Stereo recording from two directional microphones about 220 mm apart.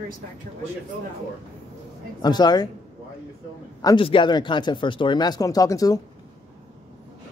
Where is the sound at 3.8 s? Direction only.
20° left (ahead or behind).